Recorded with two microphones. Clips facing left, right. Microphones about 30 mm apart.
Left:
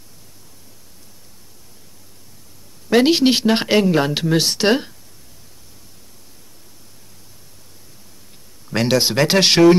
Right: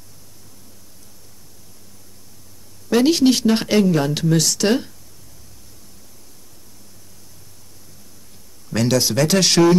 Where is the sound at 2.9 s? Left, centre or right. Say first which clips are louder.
Left 1 dB; left.